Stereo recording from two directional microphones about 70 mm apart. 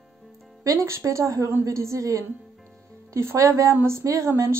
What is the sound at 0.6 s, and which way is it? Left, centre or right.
Speech, right.